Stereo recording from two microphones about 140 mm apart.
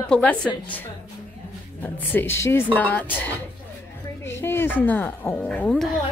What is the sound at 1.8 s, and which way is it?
Speech, 15° left (ahead or behind).